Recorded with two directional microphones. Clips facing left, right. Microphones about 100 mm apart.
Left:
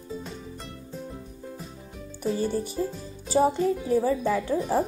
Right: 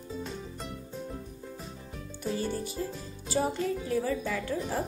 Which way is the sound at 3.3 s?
30° left (ahead or behind).